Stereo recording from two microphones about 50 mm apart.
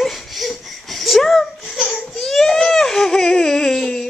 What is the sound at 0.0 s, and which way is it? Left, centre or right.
Laughter, centre.